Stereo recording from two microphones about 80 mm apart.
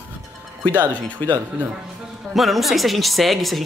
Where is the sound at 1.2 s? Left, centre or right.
Left.